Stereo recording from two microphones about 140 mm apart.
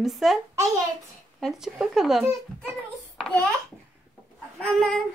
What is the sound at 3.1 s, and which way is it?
Babbling, 5° left (ahead or behind).